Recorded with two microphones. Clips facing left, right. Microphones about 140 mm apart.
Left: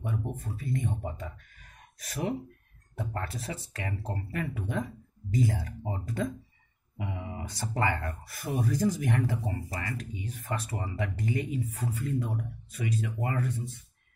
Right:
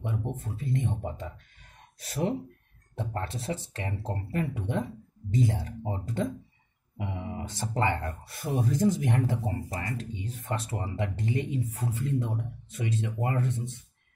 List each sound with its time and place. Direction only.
0.6 s speech: 25° right (ahead or behind)